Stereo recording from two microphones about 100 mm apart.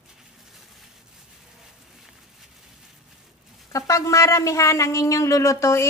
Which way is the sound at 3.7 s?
35° left (ahead or behind).